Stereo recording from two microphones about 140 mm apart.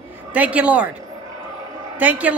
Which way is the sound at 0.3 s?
10° right (ahead or behind).